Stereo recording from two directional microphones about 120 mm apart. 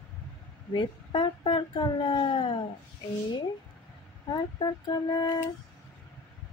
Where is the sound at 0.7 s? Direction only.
40° left (ahead or behind).